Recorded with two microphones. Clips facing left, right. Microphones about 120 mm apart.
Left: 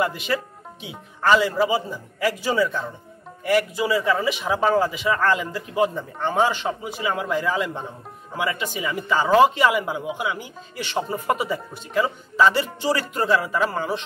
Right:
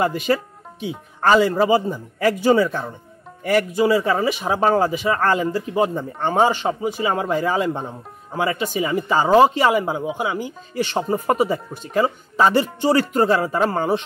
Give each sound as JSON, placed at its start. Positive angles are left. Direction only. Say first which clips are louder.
{"t": 0.0, "sound": "speech", "louder": "right 4 dB", "side_deg": -40}
{"t": 6.7, "sound": "speech", "louder": "right 5 dB", "side_deg": -30}